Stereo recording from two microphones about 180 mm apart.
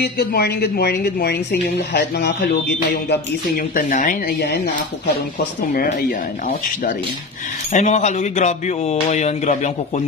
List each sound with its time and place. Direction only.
0.0 s a woman's voice: 65° left (ahead or behind)
3.1 s speech: 50° left (ahead or behind)
7.7 s speech: 40° left (ahead or behind)